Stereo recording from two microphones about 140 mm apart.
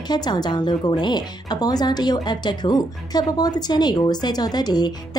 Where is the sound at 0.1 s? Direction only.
30° left (ahead or behind).